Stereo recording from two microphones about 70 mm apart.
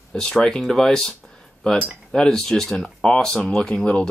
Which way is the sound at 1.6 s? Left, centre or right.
Centre.